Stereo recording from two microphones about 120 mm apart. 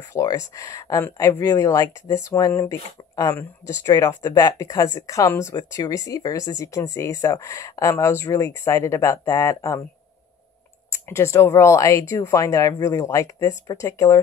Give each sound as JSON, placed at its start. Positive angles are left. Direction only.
{"t": 0.1, "sound": "speech", "side_deg": 30}
{"t": 10.9, "sound": "speech", "side_deg": 20}